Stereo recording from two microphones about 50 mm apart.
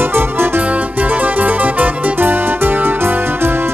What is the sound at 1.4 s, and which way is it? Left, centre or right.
Music, right.